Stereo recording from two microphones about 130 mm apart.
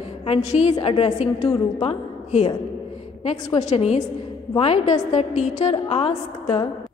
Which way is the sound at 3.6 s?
55° left (ahead or behind).